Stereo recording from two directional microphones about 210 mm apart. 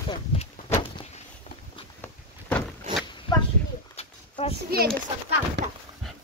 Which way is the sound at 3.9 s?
30° left (ahead or behind).